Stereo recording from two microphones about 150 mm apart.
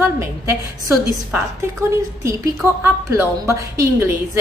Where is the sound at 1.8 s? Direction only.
20° right (ahead or behind).